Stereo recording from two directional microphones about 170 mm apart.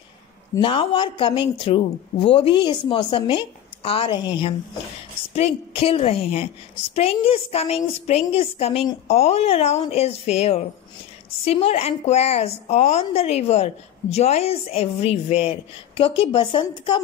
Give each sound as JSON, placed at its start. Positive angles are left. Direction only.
{"t": 0.6, "sound": "a woman's voice", "side_deg": 30}